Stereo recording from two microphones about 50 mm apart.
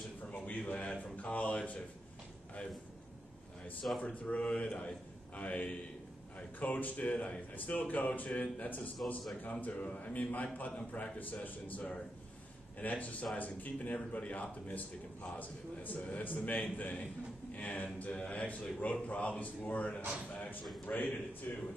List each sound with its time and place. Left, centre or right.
0.3 s a sound: left
1.1 s a man's voice: left
4.0 s a man's voice: left